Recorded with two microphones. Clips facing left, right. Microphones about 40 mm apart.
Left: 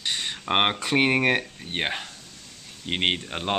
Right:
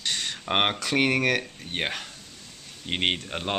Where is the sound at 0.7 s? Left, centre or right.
Left.